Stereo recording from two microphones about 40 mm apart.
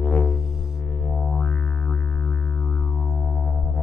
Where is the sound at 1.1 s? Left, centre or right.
Left.